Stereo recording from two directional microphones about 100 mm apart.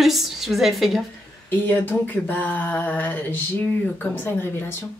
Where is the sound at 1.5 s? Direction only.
20° left (ahead or behind).